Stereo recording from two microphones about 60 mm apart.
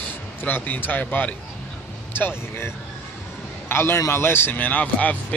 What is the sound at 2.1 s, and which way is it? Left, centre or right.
A man's voice, left.